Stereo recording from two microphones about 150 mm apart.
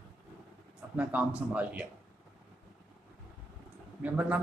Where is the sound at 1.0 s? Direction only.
10° right (ahead or behind).